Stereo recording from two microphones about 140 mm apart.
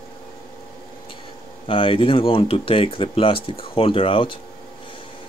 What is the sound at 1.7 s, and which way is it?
Speech, 40° left (ahead or behind).